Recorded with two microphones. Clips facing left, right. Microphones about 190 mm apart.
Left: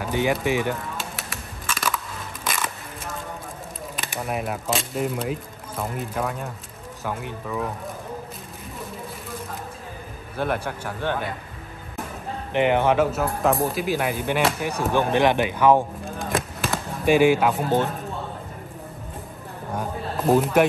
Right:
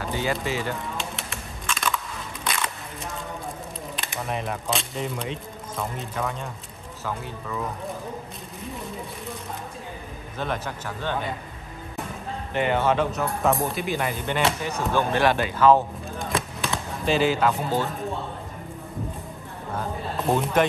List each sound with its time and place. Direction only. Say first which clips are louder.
0.4 s speech: left 5 dB; 15° left (ahead or behind)
0.9 s a sound: right 1 dB; 5° left (ahead or behind)
4.0 s speech: left 3 dB; 5° left (ahead or behind)
10.3 s speech: left 4 dB; 10° left (ahead or behind)
12.5 s speech: left 3 dB; 15° left (ahead or behind)
16.2 s fireworks: left 2 dB; centre (ahead or behind)
17.0 s speech: left 4 dB; 15° left (ahead or behind)
20.2 s speech: left 4 dB; centre (ahead or behind)